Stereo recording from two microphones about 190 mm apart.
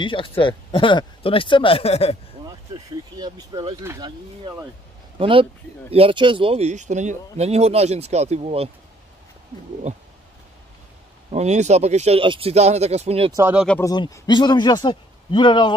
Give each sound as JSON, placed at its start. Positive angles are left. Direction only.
{"t": 0.0, "sound": "speech", "side_deg": 25}
{"t": 2.4, "sound": "speech", "side_deg": -25}
{"t": 5.2, "sound": "speech", "side_deg": -30}
{"t": 9.9, "sound": "speech", "side_deg": -35}
{"t": 11.2, "sound": "speech", "side_deg": -35}
{"t": 13.4, "sound": "speech", "side_deg": -10}
{"t": 13.7, "sound": "speech", "side_deg": 10}